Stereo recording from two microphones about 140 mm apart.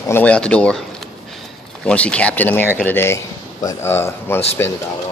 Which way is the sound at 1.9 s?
10° left (ahead or behind).